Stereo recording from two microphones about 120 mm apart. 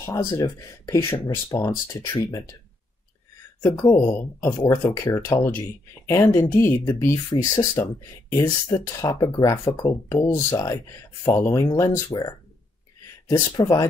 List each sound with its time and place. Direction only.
0.0 s speech: 25° left (ahead or behind)
3.6 s speech: 20° left (ahead or behind)
13.6 s speech: 30° left (ahead or behind)